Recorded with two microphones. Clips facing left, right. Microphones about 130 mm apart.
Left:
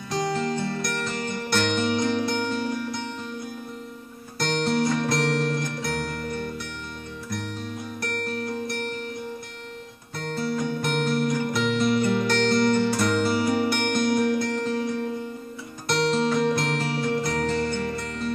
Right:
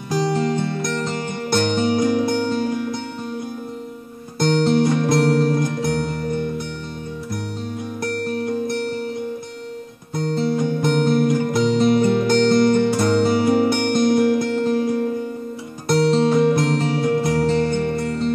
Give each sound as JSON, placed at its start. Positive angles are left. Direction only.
{"t": 0.2, "sound": "music", "side_deg": -25}
{"t": 4.4, "sound": "music", "side_deg": -25}
{"t": 8.0, "sound": "music", "side_deg": -25}
{"t": 10.1, "sound": "music", "side_deg": -25}
{"t": 16.3, "sound": "music", "side_deg": -30}